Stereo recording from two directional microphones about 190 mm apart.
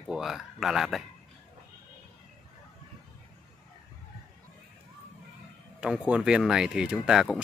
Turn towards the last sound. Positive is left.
turn(degrees=0)  # may be behind; listen again after turning